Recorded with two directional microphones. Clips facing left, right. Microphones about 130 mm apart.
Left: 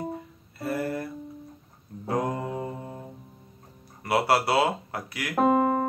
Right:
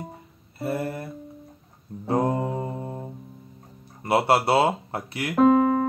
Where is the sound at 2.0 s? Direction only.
30° right (ahead or behind).